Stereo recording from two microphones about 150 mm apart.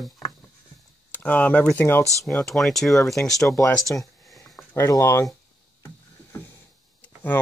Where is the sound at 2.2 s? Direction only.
Centre (ahead or behind).